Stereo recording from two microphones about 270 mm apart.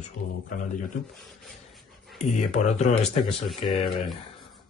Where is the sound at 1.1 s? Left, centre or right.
Centre.